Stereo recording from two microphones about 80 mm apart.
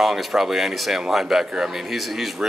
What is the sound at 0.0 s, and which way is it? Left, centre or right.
Speech, centre.